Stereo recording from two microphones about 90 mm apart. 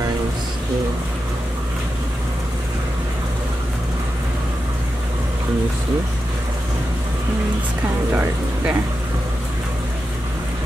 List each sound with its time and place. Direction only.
8.1 s speech: 20° right (ahead or behind)